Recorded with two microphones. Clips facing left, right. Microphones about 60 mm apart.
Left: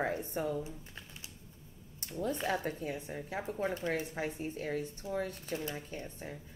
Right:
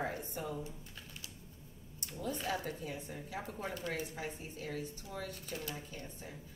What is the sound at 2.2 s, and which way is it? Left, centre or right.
Speech, left.